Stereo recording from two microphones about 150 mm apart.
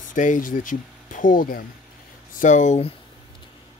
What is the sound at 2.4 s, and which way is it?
Speech, 55° left (ahead or behind).